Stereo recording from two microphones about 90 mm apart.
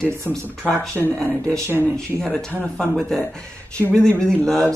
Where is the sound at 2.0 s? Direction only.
10° left (ahead or behind).